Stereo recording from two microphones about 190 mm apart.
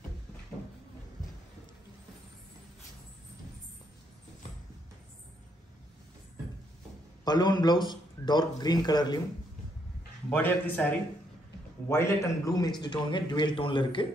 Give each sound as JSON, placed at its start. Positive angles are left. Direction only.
{"t": 7.2, "sound": "a man's voice", "side_deg": 20}
{"t": 10.3, "sound": "a man's voice", "side_deg": 10}